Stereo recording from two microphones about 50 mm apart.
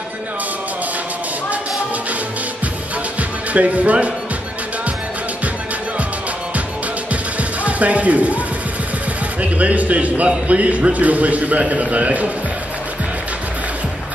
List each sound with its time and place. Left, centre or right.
3.2 s music: right
7.6 s speech: right
9.4 s a man's voice: right